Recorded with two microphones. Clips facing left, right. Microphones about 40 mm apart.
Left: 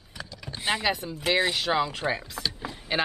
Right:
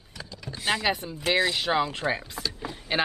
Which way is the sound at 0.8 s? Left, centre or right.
Centre.